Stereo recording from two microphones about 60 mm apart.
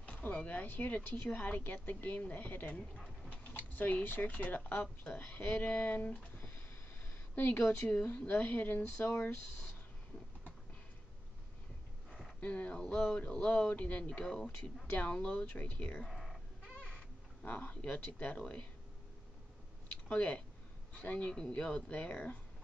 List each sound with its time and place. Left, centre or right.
0.0 s speech: left
2.8 s speech: centre
3.3 s speech: left
8.3 s speech: left
12.4 s speech: left
14.2 s speech: centre
14.9 s speech: left
16.1 s chicken: centre
16.8 s speech: centre
20.1 s speech: left